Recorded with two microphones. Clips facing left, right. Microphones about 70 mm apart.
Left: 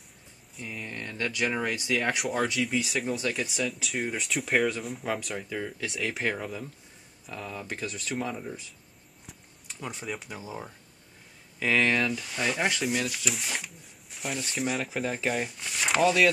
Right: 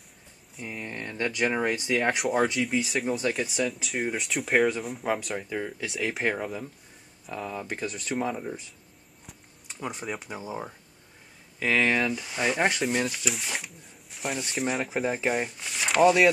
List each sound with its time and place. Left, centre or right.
0.6 s speech: centre
0.8 s speech: centre
2.6 s speech: centre
10.0 s speech: centre
11.6 s speech: centre; by 12.8 s right
13.1 s speech: centre
16.0 s speech: right